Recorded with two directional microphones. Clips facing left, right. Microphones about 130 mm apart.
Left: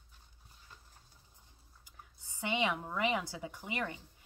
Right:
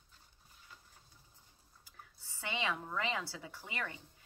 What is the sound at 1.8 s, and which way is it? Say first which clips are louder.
Speech: even; 20° left (ahead or behind).